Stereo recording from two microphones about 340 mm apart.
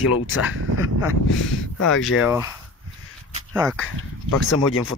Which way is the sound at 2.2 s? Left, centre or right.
Centre.